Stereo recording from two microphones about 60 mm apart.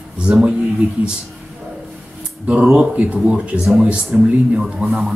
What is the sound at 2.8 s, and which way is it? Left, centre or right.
Speech, centre.